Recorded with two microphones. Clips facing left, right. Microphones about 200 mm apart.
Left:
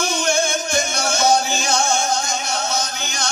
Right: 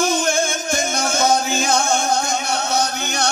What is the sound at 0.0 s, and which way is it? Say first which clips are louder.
Music: right 2 dB; 50° right (ahead or behind).